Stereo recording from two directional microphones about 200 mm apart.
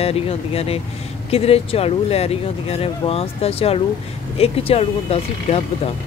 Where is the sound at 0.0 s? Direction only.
30° left (ahead or behind).